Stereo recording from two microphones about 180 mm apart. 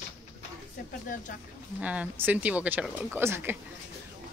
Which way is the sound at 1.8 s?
10° right (ahead or behind).